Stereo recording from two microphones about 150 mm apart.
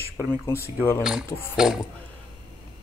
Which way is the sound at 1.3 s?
15° left (ahead or behind).